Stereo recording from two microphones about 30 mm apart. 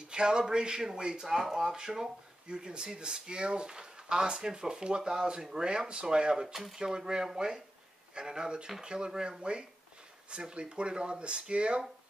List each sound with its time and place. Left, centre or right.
0.1 s speech: right
1.2 s speech: centre
1.7 s speech: centre
2.4 s speech: right
6.4 s speech: centre
6.8 s speech: right